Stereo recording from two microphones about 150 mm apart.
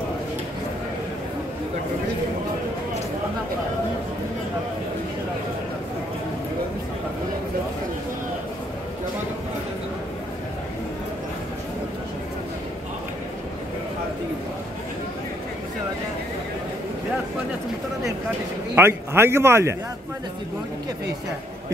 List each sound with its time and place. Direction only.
18.8 s a man's voice: 15° right (ahead or behind)